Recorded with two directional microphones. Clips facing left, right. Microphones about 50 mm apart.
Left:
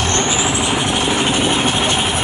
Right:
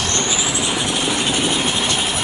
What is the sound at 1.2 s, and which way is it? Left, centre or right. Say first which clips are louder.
Vehicle: left 3 dB; left.